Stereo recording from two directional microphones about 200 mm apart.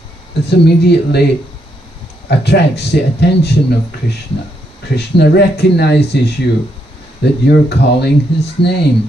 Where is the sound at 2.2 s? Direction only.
55° left (ahead or behind).